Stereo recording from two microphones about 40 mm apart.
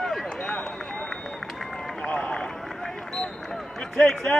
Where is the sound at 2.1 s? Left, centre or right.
Left.